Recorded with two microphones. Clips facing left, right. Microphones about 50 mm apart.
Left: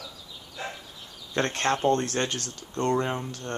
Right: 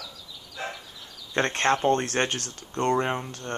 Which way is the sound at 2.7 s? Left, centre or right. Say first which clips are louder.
Right 2 dB; right.